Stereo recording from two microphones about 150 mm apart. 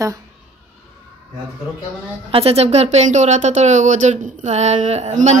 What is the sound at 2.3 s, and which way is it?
Speech, 40° right (ahead or behind).